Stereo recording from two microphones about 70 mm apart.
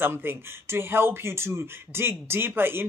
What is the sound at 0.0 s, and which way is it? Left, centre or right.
Speech, right.